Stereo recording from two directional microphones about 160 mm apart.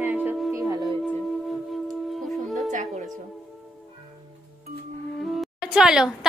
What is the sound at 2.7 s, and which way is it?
Music, 50° right (ahead or behind).